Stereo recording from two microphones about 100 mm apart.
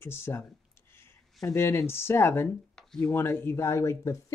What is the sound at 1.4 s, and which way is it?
Speech, 25° left (ahead or behind).